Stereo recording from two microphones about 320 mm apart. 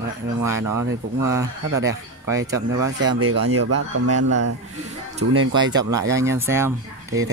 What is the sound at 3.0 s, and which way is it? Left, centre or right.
Speech, right.